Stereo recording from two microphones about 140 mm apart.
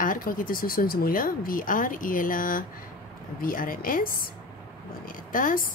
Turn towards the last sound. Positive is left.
turn(degrees=75)  # may be behind; listen again after turning